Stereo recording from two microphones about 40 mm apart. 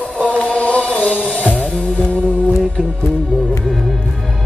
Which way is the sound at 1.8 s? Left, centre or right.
Left.